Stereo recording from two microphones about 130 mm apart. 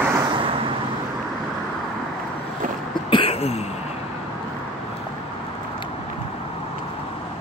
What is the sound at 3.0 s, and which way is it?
Throat clearing, 45° left (ahead or behind).